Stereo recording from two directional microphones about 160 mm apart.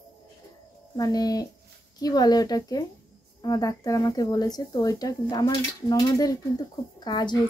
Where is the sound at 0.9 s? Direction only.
25° left (ahead or behind).